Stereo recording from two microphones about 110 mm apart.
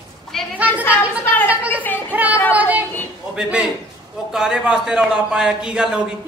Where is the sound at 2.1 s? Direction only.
15° right (ahead or behind).